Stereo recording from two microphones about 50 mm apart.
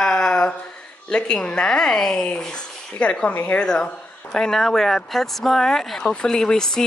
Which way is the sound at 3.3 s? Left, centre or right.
Left.